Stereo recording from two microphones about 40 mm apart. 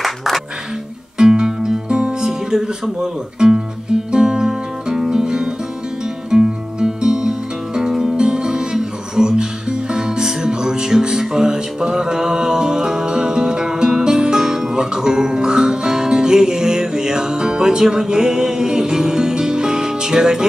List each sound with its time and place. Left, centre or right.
0.0 s music: centre
1.1 s music: centre
2.2 s speech: centre
4.1 s music: centre